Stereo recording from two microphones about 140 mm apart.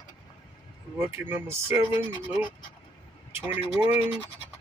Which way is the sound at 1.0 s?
15° right (ahead or behind).